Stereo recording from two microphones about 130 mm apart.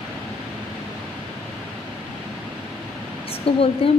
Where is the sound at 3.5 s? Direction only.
45° left (ahead or behind).